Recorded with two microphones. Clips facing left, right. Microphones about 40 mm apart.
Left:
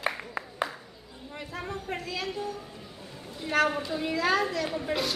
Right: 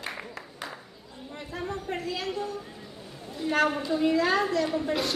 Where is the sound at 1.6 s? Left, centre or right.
Centre.